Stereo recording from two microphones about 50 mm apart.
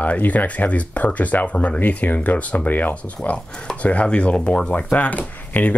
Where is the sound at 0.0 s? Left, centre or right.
Left.